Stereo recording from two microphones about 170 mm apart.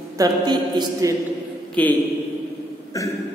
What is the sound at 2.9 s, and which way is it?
Speech, 20° left (ahead or behind).